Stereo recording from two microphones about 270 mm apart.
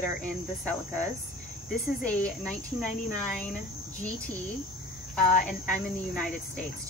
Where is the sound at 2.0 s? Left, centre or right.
Centre.